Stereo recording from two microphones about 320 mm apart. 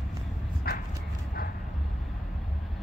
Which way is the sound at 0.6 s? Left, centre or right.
Left.